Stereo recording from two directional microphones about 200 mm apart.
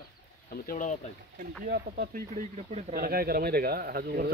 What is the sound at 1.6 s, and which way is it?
Speech, 45° right (ahead or behind).